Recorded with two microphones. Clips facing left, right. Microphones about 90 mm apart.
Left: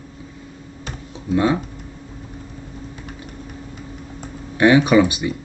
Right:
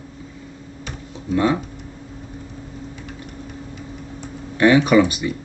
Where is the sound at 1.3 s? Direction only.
20° left (ahead or behind).